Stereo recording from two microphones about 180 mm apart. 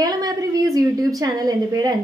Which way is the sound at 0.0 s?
20° right (ahead or behind).